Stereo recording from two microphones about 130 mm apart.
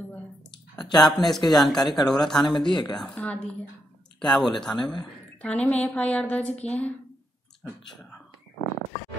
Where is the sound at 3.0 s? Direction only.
10° left (ahead or behind).